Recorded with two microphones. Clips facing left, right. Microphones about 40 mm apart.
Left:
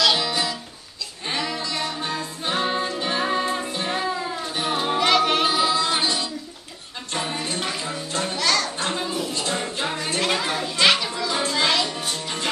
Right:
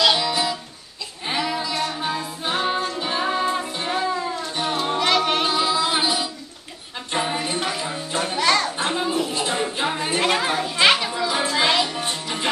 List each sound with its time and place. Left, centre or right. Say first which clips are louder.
0.0 s music: right 2 dB; centre
7.1 s a sound: right 3 dB; centre
7.8 s music: right 2 dB; centre
9.9 s children playing: right 2 dB; centre